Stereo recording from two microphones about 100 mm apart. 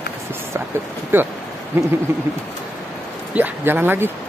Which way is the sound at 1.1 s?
20° right (ahead or behind).